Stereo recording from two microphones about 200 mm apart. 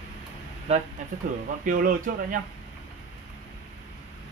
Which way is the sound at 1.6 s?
45° right (ahead or behind).